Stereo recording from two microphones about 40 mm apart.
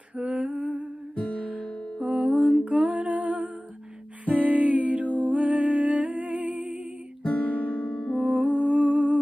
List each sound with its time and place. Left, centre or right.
0.1 s humming: right
1.1 s music: left
2.0 s music: right
2.5 s humming: right
4.3 s music: right
7.2 s music: left
8.3 s humming: right